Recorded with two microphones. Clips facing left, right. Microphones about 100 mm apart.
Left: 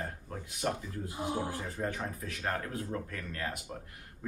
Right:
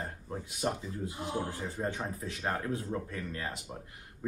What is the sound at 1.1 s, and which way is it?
Speech, 15° left (ahead or behind).